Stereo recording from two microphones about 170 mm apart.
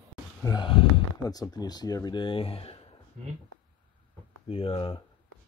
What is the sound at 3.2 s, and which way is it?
Speech, 50° right (ahead or behind).